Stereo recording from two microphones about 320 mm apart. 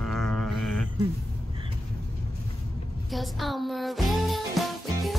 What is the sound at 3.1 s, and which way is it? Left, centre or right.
Music, centre.